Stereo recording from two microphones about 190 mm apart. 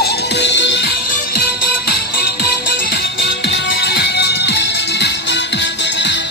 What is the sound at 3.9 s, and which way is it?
Music, 60° left (ahead or behind).